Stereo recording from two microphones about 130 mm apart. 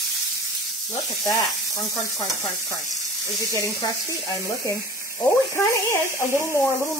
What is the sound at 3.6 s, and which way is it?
Speech, 25° left (ahead or behind).